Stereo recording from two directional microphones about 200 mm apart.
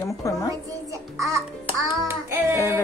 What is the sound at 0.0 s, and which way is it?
Speech, 15° left (ahead or behind).